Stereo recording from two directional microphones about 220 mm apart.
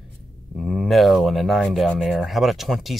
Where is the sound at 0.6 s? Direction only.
Centre (ahead or behind).